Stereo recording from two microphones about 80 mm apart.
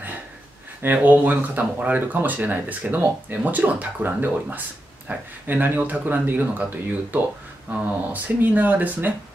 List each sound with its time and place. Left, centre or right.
0.8 s speech: right